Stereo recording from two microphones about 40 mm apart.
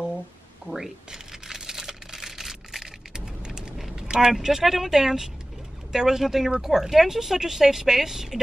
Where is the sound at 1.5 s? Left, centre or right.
Centre.